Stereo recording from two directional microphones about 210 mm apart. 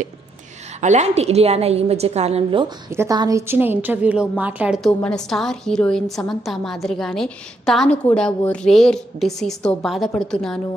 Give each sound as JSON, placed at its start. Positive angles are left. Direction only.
{"t": 0.7, "sound": "a woman's voice", "side_deg": -35}
{"t": 2.9, "sound": "a woman's voice", "side_deg": -15}